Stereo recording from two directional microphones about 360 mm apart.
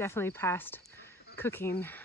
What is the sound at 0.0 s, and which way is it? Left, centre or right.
Speech, centre.